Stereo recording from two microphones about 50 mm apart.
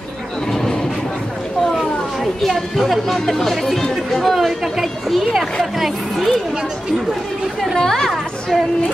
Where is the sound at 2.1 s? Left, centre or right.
Centre.